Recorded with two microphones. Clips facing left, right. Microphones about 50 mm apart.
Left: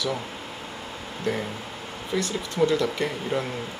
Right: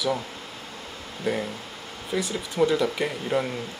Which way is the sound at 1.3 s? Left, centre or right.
Centre.